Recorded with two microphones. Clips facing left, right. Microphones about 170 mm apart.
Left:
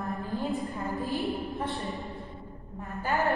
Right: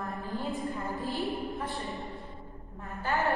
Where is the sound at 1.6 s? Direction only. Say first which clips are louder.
Left 3 dB; centre (ahead or behind).